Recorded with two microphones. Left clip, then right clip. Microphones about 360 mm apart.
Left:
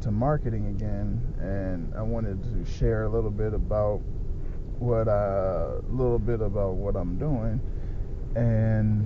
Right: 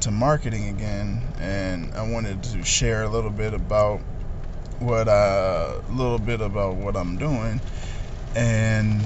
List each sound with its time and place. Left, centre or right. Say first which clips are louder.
0.2 s speech: right 5 dB; right